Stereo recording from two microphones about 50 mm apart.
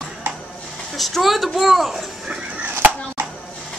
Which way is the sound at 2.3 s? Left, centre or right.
Right.